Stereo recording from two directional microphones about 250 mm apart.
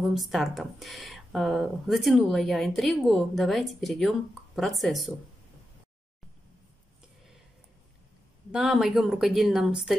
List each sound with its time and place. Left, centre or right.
0.0 s speech: centre
8.5 s speech: centre